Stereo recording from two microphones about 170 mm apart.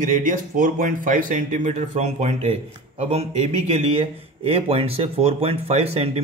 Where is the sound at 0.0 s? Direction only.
50° right (ahead or behind).